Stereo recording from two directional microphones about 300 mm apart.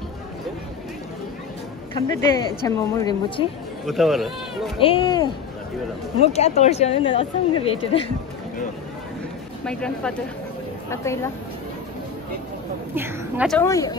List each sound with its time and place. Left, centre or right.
2.0 s a woman's voice: centre
3.8 s speech: centre
4.7 s a woman's voice: centre
9.7 s a woman's voice: centre
12.9 s a woman's voice: centre
13.6 s a woman's voice: centre